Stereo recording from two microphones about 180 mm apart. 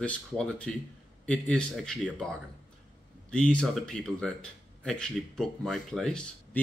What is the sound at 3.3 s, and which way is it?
Speech, 5° left (ahead or behind).